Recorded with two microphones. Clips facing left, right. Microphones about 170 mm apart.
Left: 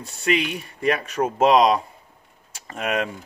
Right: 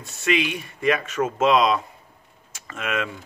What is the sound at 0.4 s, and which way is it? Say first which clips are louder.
Speech: right 1 dB; 35° left (ahead or behind).